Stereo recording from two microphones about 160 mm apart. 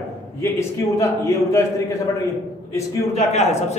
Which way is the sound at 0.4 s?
20° left (ahead or behind).